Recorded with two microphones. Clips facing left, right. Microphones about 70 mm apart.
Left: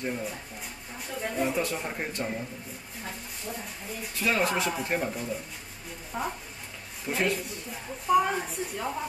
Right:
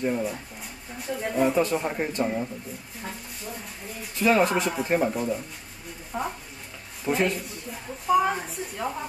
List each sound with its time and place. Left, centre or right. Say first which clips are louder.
0.0 s speech: right 6 dB; centre
4.0 s speech: right 6 dB; centre